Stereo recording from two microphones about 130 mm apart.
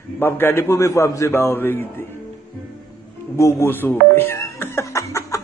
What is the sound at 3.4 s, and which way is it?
Snicker, 20° left (ahead or behind).